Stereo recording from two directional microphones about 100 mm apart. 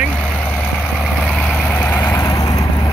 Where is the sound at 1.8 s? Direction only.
25° left (ahead or behind).